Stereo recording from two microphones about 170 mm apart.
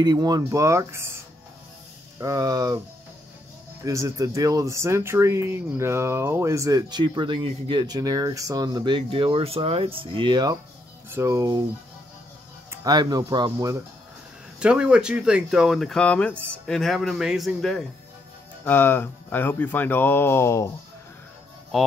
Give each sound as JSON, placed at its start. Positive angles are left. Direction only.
{"t": 0.0, "sound": "speech", "side_deg": -25}
{"t": 2.1, "sound": "speech", "side_deg": -20}
{"t": 3.8, "sound": "speech", "side_deg": -20}
{"t": 12.8, "sound": "speech", "side_deg": -25}
{"t": 14.6, "sound": "speech", "side_deg": -5}
{"t": 18.6, "sound": "speech", "side_deg": 10}